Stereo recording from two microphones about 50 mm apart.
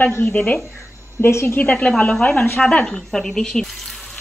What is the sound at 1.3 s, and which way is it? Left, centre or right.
Speech, left.